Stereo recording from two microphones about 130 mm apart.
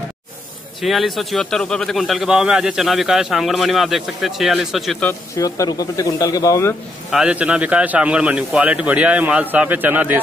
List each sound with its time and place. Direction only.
0.7 s a man's voice: centre (ahead or behind)
5.4 s speech: 25° left (ahead or behind)
7.1 s a man's voice: 5° right (ahead or behind)